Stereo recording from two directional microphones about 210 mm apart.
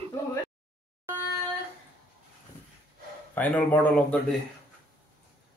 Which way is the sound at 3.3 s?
10° left (ahead or behind).